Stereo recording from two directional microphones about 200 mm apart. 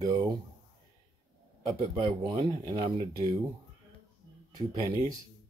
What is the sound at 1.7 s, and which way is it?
Speech, 20° right (ahead or behind).